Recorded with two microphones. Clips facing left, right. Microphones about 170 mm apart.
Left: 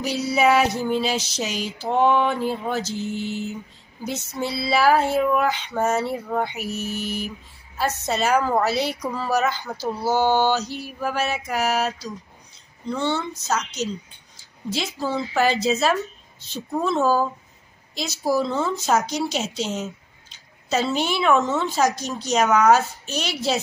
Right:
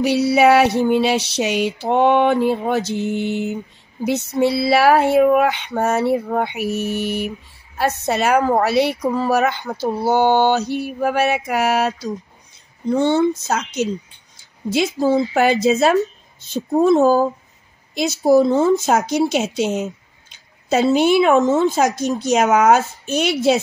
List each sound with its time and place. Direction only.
0.0 s speech: 65° right (ahead or behind)
12.8 s speech: 50° right (ahead or behind)